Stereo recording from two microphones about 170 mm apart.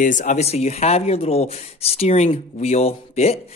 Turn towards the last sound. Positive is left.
turn(degrees=35)  # may be behind; listen again after turning